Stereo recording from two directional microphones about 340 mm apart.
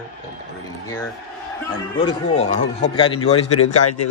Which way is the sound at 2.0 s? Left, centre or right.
Centre.